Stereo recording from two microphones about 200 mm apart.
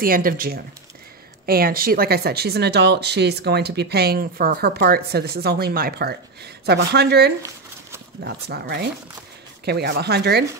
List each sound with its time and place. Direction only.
0.0 s speech: 45° right (ahead or behind)